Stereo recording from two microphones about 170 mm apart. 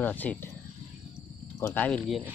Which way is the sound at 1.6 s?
10° left (ahead or behind).